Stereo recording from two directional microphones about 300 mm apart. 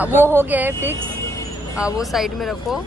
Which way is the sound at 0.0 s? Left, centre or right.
Centre.